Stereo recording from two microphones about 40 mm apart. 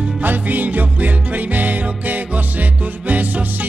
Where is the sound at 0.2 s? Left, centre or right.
Right.